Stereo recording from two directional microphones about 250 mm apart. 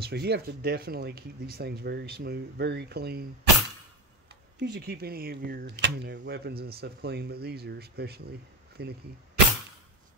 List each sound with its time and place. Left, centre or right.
0.0 s speech: right
4.6 s speech: right